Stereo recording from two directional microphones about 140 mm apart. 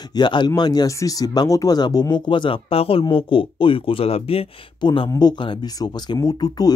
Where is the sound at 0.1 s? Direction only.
35° left (ahead or behind).